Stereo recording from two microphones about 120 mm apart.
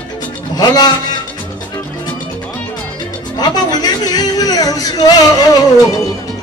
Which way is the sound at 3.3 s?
35° left (ahead or behind).